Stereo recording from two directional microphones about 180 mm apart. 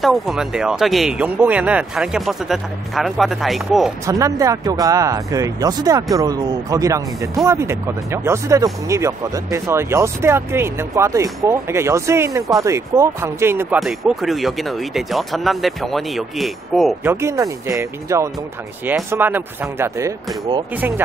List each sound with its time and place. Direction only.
0.0 s speech: centre (ahead or behind)
4.0 s speech: 15° right (ahead or behind)
13.7 s speech: centre (ahead or behind)
17.0 s speech: 15° right (ahead or behind)